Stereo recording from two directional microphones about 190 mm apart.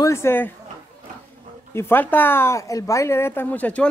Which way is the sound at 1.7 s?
10° left (ahead or behind).